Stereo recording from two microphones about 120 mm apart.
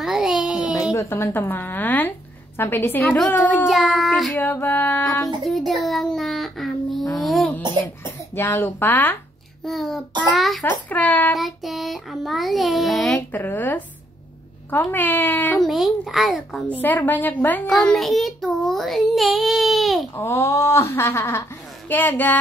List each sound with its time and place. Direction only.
0.0 s a sound: 5° right (ahead or behind)
0.9 s a woman's voice: 20° left (ahead or behind)
3.3 s a child's voice: 5° left (ahead or behind)
4.4 s speech: 15° left (ahead or behind)
5.4 s child singing: centre (ahead or behind)
7.2 s a sound: centre (ahead or behind)
7.5 s a child's voice: 20° left (ahead or behind)
9.7 s a child's voice: centre (ahead or behind)
10.6 s speech: 15° left (ahead or behind)
11.3 s a child's voice: centre (ahead or behind)
13.3 s speech: 15° left (ahead or behind)
15.6 s a child's voice: centre (ahead or behind)
16.8 s a child's voice: 15° left (ahead or behind)
20.2 s speech: 25° left (ahead or behind)